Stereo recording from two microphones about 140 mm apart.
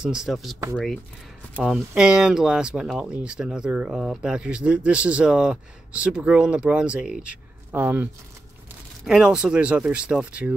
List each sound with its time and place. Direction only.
0.0 s speech: 5° right (ahead or behind)
1.6 s speech: 5° right (ahead or behind)